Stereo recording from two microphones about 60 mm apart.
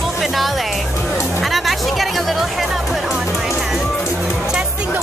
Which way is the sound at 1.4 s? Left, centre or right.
Centre.